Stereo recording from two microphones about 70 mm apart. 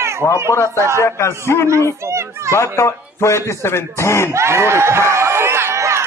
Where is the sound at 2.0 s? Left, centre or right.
Right.